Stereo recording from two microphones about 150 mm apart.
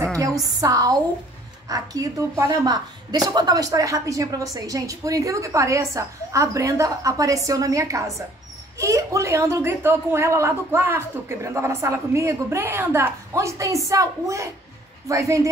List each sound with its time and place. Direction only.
0.6 s a woman's voice: 25° right (ahead or behind)